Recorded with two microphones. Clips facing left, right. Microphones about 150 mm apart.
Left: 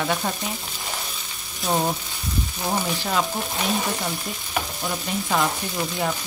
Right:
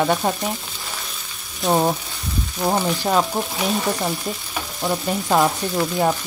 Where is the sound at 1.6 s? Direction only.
40° right (ahead or behind).